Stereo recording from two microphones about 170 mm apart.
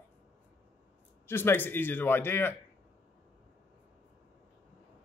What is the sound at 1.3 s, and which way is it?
Speech, 15° left (ahead or behind).